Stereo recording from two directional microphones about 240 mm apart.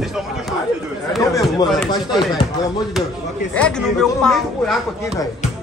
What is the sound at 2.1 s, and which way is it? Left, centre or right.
Speech, centre.